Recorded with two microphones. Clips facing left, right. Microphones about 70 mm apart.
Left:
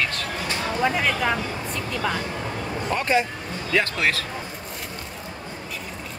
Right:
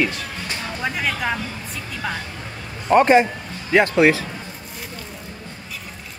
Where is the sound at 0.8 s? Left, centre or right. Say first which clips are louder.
Left 2 dB; centre.